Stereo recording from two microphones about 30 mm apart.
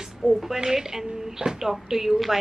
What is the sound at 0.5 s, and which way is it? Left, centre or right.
Speech, centre.